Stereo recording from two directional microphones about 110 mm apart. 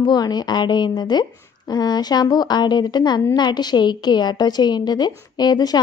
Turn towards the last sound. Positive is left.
turn(degrees=40)  # may be behind; listen again after turning